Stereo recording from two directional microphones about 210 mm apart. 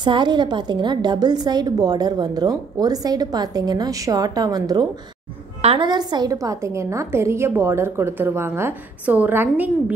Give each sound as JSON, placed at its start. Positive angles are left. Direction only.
{"t": 0.0, "sound": "a woman's voice", "side_deg": -20}